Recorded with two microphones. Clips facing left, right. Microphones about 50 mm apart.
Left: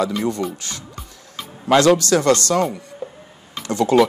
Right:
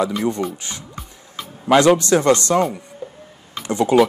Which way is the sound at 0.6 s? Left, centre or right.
Centre.